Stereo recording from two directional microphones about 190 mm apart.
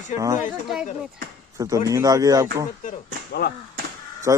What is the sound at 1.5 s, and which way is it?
Speech, 15° right (ahead or behind).